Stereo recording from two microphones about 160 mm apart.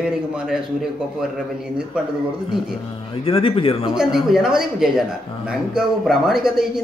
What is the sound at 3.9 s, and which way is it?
A man's voice, 5° right (ahead or behind).